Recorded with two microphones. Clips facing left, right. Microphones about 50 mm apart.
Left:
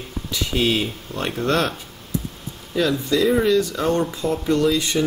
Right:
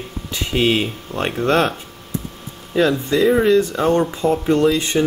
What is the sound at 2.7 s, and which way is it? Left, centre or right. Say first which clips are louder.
Speech: right 3 dB; right.